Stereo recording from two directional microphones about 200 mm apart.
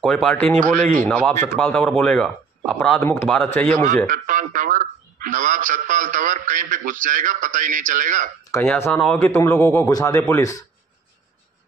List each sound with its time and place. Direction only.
0.0 s a man's voice: 5° left (ahead or behind)
0.6 s speech: 40° right (ahead or behind)
1.0 s a man's voice: 5° left (ahead or behind)
4.1 s speech: 40° right (ahead or behind)
8.5 s a man's voice: 10° left (ahead or behind)